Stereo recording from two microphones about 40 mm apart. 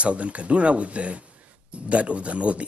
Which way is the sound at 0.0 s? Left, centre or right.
Right.